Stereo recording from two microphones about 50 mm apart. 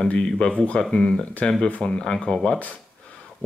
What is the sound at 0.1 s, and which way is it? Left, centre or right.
Speech, left.